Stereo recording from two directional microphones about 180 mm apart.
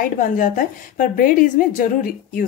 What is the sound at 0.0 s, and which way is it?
A woman's voice, 50° left (ahead or behind).